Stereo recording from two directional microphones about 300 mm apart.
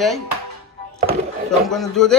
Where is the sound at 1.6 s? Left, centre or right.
Centre.